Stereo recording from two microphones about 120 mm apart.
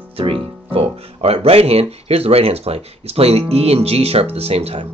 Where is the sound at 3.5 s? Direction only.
60° right (ahead or behind).